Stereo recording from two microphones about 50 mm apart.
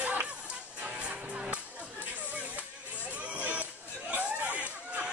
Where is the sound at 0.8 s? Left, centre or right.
Right.